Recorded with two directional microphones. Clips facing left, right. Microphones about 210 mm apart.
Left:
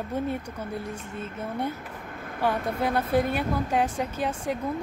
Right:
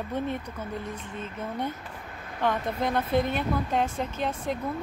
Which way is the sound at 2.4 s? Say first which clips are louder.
Left 1 dB; 10° left (ahead or behind).